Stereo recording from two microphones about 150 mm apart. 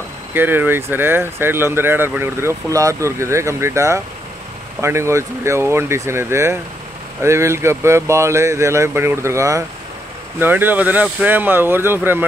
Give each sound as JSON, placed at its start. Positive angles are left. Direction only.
{"t": 0.3, "sound": "speech", "side_deg": -15}